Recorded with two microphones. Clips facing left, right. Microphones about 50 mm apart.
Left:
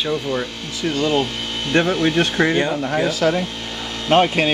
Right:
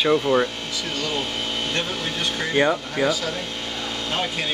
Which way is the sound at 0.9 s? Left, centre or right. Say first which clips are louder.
Left 9 dB; left.